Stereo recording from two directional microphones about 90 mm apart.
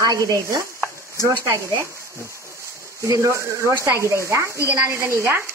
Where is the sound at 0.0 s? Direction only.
40° right (ahead or behind).